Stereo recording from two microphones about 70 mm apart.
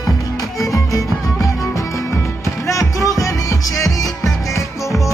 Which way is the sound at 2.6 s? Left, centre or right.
Left.